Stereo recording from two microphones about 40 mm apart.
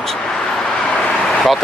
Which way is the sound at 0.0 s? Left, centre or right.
Centre.